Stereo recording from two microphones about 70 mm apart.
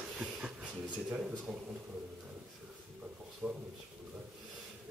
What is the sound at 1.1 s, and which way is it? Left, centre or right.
Speech, centre.